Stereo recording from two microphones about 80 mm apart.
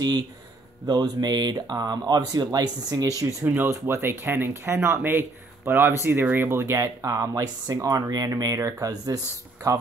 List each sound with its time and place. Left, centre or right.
0.8 s speech: right
3.2 s speech: right
3.4 s speech: right